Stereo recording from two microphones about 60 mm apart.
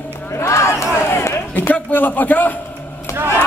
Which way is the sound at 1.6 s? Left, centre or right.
Left.